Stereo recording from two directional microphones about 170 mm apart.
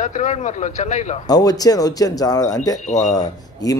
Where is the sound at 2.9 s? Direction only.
45° left (ahead or behind).